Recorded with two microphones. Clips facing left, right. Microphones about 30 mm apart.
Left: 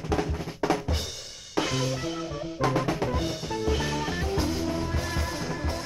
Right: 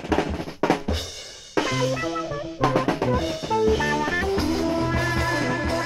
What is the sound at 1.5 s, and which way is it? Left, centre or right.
Music, right.